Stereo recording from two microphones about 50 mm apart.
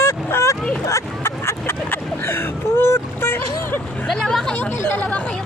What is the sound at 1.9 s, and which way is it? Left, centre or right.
Boat, left.